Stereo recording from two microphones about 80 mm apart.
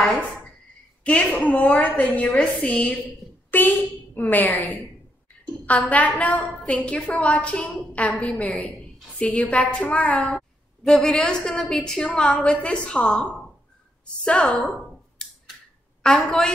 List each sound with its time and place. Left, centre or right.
1.0 s a woman's voice: centre
3.4 s a woman's voice: left
5.7 s a woman's voice: centre
7.9 s a woman's voice: centre